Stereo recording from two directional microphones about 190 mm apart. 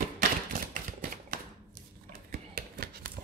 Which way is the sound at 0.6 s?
45° right (ahead or behind).